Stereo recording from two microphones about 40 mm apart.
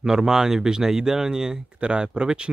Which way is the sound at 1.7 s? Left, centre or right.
Right.